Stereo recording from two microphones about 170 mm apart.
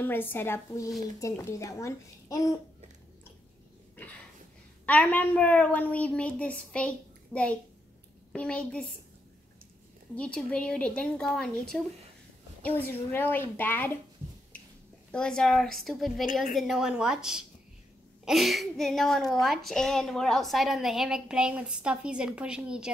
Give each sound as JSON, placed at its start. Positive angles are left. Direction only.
{"t": 0.0, "sound": "a woman's voice", "side_deg": 10}
{"t": 3.9, "sound": "a sound", "side_deg": 10}
{"t": 4.8, "sound": "a woman's voice", "side_deg": 10}
{"t": 10.1, "sound": "a woman's voice", "side_deg": 5}
{"t": 15.0, "sound": "a woman's voice", "side_deg": 5}